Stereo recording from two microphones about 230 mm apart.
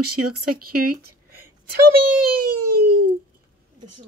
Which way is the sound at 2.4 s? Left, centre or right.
Right.